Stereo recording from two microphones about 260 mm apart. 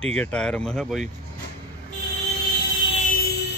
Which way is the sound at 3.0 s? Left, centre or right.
Left.